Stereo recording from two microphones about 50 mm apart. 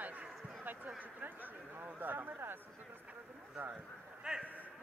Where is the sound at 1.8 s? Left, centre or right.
Right.